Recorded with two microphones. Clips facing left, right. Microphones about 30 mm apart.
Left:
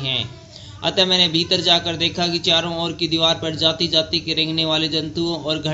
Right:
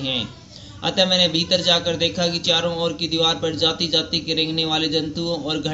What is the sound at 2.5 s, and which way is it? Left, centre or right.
Speech, centre.